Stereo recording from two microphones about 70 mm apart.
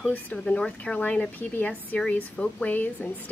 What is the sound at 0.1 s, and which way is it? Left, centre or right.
A woman's voice, centre.